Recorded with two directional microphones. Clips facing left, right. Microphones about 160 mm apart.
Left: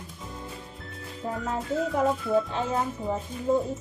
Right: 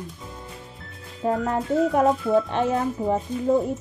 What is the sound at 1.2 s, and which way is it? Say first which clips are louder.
Speech: right 7 dB; 70° right (ahead or behind).